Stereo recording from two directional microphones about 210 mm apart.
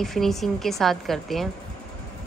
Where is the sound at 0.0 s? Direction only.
Centre (ahead or behind).